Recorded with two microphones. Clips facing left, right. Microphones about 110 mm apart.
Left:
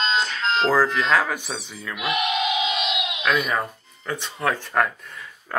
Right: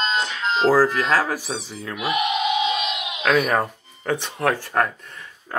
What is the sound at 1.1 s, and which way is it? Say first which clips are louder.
Speech: even; 35° right (ahead or behind).